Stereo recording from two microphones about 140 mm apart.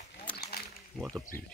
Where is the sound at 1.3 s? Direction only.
90° left.